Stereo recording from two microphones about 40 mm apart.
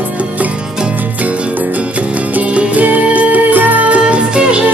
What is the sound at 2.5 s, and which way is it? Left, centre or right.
Music, right.